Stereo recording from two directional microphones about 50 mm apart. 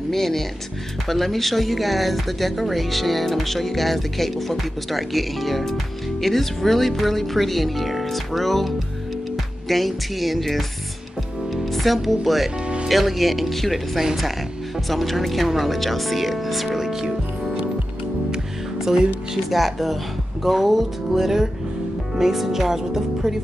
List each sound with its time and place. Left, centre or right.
0.1 s speech: centre
18.3 s music: centre
19.5 s speech: centre